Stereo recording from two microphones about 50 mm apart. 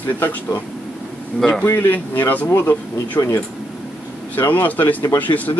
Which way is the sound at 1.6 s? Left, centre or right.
Left.